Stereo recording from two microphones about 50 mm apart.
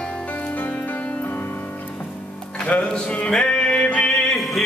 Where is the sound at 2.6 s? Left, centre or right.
Left.